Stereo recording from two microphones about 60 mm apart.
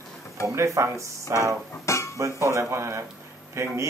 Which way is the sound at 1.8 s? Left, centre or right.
Left.